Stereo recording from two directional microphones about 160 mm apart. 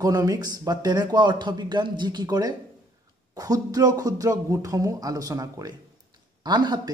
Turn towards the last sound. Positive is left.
turn(degrees=-25)  # may be behind; listen again after turning